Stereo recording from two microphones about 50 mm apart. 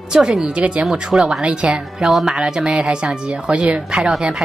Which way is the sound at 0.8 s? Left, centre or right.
Centre.